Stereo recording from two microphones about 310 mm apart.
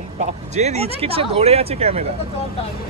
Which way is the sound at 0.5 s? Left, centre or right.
Right.